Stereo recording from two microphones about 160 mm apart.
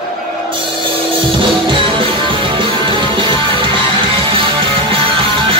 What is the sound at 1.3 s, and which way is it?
Music, 35° right (ahead or behind).